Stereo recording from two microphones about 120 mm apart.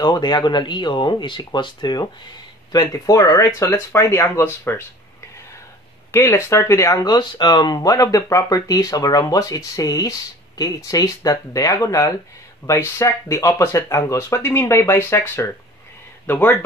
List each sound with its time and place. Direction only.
0.0 s speech: 40° left (ahead or behind); by 4.8 s 20° left (ahead or behind)
6.1 s speech: 25° left (ahead or behind)
7.2 s speech: 40° left (ahead or behind); by 16.5 s 15° left (ahead or behind)